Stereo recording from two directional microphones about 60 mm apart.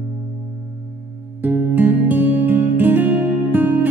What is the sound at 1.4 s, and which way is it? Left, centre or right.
Music, right.